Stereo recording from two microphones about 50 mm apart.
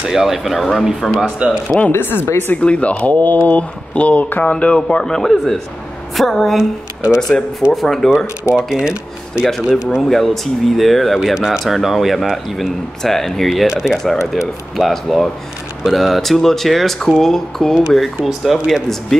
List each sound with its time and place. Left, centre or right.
0.0 s speech: centre
1.2 s speech: centre
1.9 s speech: left
2.6 s speech: left; by 6.7 s centre
7.2 s speech: centre
8.5 s speech: centre
10.0 s speech: centre
11.3 s speech: centre
11.6 s speech: centre
13.7 s speech: centre
14.8 s speech: centre